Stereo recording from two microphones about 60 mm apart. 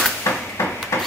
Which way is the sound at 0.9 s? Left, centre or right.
Left.